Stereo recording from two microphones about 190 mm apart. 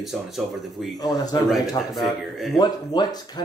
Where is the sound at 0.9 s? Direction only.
20° left (ahead or behind).